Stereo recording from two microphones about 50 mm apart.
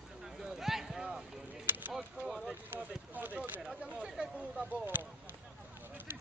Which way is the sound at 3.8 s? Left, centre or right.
Centre.